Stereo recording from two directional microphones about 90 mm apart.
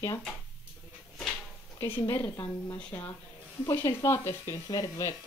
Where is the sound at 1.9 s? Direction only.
25° left (ahead or behind).